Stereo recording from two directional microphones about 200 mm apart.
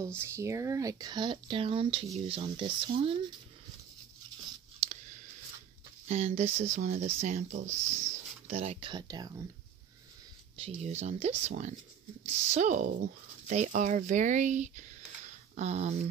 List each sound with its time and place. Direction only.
0.0 s speech: 15° right (ahead or behind)
6.0 s speech: 30° right (ahead or behind)
10.6 s speech: 30° right (ahead or behind)